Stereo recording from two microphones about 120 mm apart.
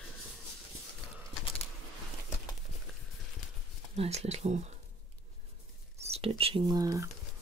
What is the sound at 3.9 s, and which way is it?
Speech, 55° right (ahead or behind).